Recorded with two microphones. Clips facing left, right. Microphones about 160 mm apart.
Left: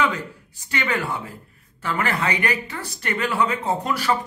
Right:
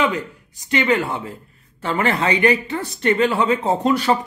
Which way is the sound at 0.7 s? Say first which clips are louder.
Right 6 dB; 20° right (ahead or behind).